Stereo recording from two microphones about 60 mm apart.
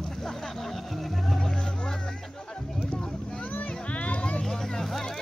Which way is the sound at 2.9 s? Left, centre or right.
Centre.